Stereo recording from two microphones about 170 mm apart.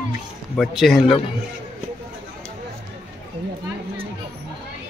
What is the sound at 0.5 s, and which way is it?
Speech, centre (ahead or behind).